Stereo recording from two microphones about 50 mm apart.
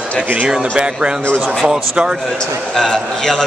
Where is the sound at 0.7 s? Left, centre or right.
Centre.